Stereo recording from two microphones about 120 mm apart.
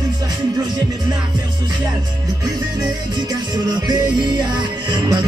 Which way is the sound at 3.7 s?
35° right (ahead or behind).